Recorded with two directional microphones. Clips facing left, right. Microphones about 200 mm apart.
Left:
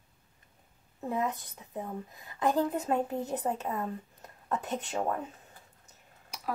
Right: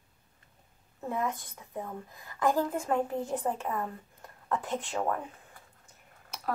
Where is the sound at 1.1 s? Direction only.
20° left (ahead or behind).